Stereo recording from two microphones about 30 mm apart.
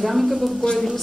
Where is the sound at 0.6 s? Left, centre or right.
Left.